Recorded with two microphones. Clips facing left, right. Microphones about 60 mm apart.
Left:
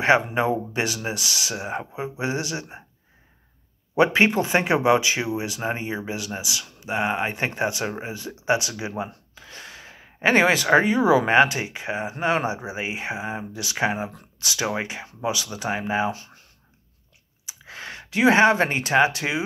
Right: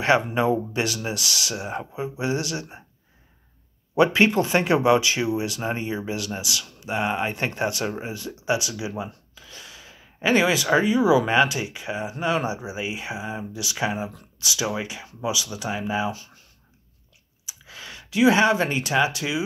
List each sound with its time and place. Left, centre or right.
0.0 s speech: left
3.9 s speech: left
17.5 s speech: left